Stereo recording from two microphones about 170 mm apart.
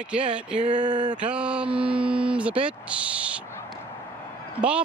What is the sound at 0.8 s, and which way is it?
Speech, 25° right (ahead or behind).